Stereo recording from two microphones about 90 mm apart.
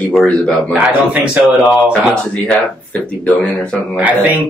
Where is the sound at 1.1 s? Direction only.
5° right (ahead or behind).